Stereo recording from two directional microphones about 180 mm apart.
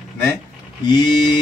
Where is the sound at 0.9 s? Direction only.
25° left (ahead or behind).